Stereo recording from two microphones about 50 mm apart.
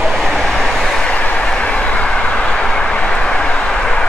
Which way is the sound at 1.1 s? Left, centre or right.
Left.